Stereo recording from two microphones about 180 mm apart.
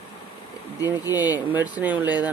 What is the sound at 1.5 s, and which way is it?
Speech, 10° right (ahead or behind).